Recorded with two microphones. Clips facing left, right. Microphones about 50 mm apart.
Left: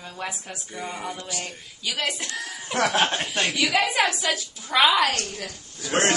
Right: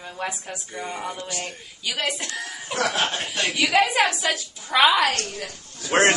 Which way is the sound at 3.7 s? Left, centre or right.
Centre.